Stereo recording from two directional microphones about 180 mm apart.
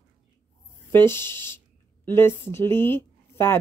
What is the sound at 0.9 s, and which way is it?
Speech, 15° left (ahead or behind).